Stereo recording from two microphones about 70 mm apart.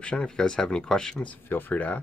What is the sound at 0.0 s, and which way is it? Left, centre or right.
Speech, centre.